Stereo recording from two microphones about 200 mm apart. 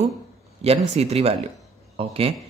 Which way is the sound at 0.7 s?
30° right (ahead or behind).